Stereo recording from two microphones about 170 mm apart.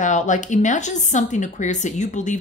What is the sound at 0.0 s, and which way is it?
Speech, 45° left (ahead or behind).